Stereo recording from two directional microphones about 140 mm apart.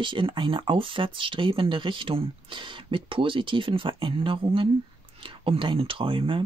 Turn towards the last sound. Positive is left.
turn(degrees=-40)  # may be behind; listen again after turning